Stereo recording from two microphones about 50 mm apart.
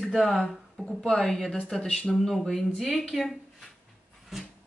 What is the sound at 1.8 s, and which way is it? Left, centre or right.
Speech, centre.